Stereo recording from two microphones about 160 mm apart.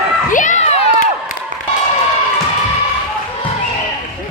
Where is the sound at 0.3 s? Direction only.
50° left (ahead or behind).